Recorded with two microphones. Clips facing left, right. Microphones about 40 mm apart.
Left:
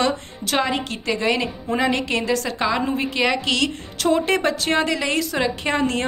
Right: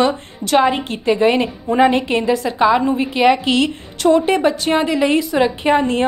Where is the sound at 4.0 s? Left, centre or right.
Centre.